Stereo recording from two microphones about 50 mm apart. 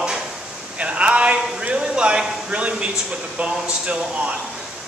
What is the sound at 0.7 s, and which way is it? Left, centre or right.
A man's voice, right.